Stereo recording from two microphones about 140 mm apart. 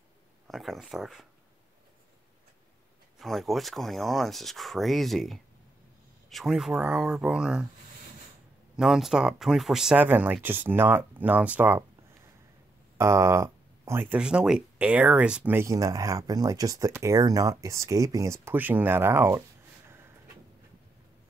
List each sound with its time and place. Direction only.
0.5 s speech: centre (ahead or behind)
3.2 s speech: centre (ahead or behind)
8.7 s speech: 5° right (ahead or behind)
12.9 s speech: 20° right (ahead or behind)
14.1 s speech: 5° right (ahead or behind)